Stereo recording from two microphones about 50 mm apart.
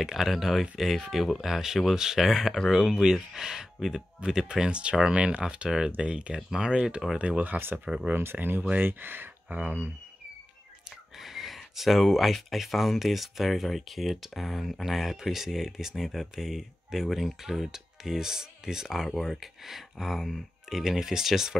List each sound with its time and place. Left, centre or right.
0.0 s speech: centre
7.2 s speech: right
7.5 s speech: right
7.8 s speech: centre
8.1 s speech: right
11.1 s speech: centre